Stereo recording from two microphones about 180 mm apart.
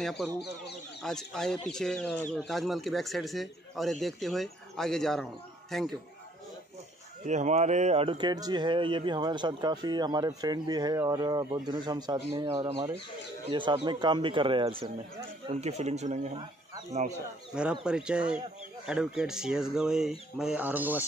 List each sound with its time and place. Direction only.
0.0 s speech: 5° left (ahead or behind)
7.2 s speech: 40° right (ahead or behind)
17.6 s speech: 5° right (ahead or behind)